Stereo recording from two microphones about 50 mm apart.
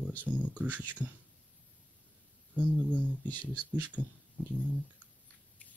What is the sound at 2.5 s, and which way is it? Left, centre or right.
Speech, right.